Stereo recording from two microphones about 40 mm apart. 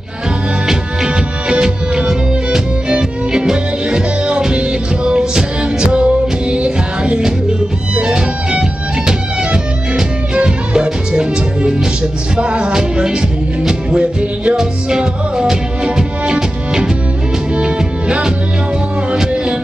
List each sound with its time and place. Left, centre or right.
0.7 s music: centre
14.6 s music: centre